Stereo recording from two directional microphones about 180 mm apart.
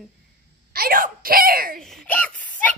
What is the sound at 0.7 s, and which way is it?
Speech, 55° right (ahead or behind).